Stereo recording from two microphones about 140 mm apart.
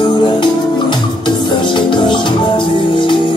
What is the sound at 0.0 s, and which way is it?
Music, 35° left (ahead or behind).